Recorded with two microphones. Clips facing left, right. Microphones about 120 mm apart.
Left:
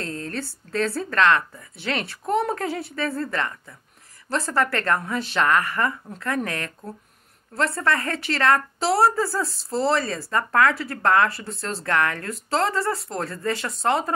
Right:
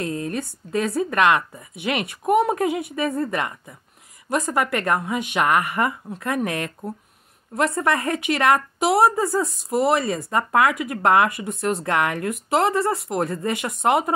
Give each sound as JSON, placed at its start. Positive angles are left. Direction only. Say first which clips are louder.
{"t": 0.0, "sound": "a woman's voice", "louder": "right 4 dB", "side_deg": -15}